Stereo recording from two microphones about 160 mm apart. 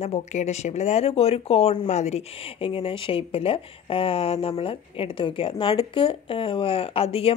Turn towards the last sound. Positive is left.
turn(degrees=35)  # may be behind; listen again after turning